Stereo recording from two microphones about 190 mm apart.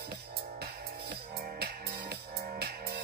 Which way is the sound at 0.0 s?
55° right (ahead or behind).